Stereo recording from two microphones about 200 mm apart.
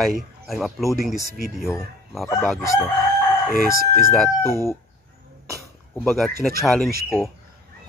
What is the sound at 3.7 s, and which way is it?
Speech, 50° right (ahead or behind).